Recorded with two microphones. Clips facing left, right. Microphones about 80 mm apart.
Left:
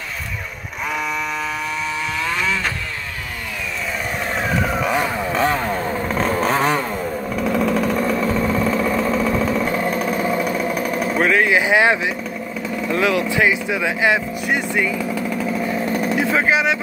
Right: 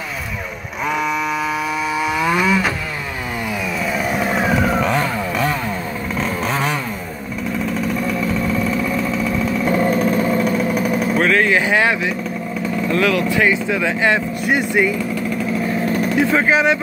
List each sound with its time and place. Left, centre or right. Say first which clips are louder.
2.2 s vehicle: right 6 dB; centre
4.2 s vehicle: right 3 dB; centre
4.8 s chainsaw: right 1 dB; centre
5.3 s vehicle: left 2 dB; left
7.5 s vehicle: left 2 dB; left
10.7 s vehicle: right 3 dB; centre
14.4 s speech: right 3 dB; centre
16.2 s speech: right 3 dB; centre